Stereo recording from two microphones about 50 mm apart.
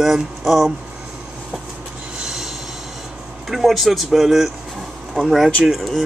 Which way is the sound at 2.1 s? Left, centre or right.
Centre.